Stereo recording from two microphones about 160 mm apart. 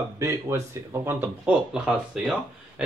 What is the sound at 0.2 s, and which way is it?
Speech, 15° right (ahead or behind).